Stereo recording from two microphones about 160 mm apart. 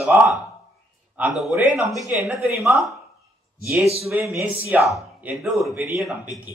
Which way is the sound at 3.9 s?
Centre (ahead or behind).